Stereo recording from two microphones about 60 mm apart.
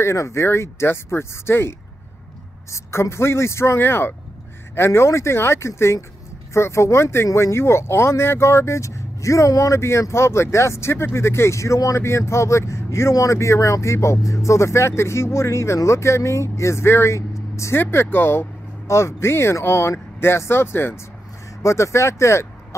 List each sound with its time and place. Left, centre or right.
0.0 s speech: left
17.3 s vehicle: left
17.7 s speech: left
21.6 s speech: left